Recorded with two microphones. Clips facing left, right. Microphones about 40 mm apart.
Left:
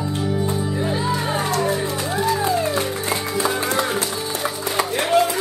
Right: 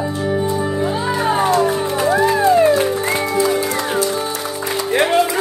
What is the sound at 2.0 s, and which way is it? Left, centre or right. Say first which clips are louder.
Music: right 9 dB; right.